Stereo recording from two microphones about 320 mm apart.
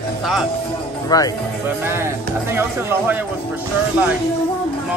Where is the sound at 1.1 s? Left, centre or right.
Centre.